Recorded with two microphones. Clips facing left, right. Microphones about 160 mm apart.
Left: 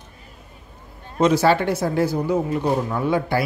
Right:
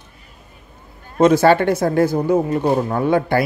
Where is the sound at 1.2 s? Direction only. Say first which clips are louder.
Right 4 dB; 50° right (ahead or behind).